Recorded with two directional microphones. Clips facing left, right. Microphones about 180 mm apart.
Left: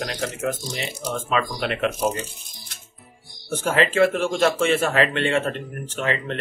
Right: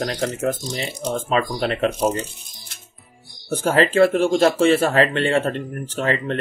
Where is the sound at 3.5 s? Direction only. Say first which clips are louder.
Right 3 dB; 35° right (ahead or behind).